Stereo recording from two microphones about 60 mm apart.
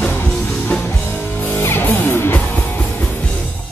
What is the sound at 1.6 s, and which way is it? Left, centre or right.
Music, left.